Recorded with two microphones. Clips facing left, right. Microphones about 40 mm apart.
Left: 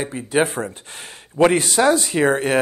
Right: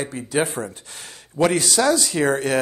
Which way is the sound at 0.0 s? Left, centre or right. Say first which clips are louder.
Left 3 dB; left.